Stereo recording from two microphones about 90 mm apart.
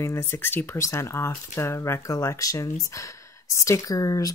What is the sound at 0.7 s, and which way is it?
Speech, 35° left (ahead or behind).